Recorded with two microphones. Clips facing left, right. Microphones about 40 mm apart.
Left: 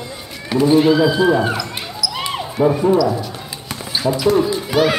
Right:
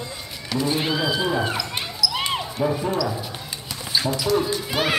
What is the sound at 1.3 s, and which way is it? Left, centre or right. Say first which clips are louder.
Speech: left 7 dB; centre.